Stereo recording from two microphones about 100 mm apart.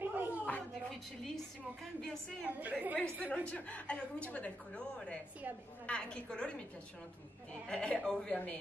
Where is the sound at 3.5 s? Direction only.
15° left (ahead or behind).